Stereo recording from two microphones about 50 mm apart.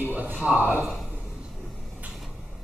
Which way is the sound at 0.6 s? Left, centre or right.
Right.